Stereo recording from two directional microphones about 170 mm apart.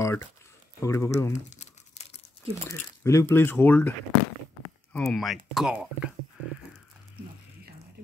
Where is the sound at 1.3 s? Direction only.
45° left (ahead or behind).